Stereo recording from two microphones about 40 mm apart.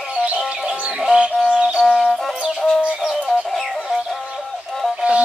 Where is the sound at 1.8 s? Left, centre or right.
Centre.